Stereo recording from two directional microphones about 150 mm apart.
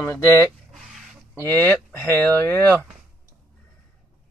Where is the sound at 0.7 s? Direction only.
Centre (ahead or behind).